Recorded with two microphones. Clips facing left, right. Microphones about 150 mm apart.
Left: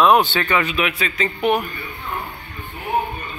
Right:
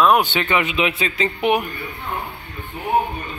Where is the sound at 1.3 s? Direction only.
15° right (ahead or behind).